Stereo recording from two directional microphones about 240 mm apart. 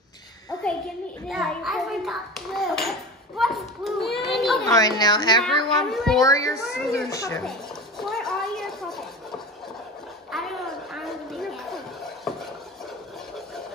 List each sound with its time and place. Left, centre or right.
1.3 s a child's voice: centre
4.6 s a woman's voice: centre
5.4 s a child's voice: centre
6.2 s a woman's voice: centre
6.6 s a child's voice: centre
7.1 s a woman's voice: centre
8.0 s a sound: centre
10.3 s a sound: centre